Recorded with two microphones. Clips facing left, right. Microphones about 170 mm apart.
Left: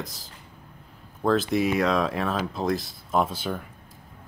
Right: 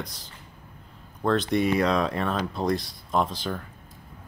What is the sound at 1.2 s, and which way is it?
Speech, 5° left (ahead or behind).